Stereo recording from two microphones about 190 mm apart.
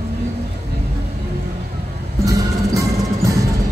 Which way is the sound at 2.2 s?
20° right (ahead or behind).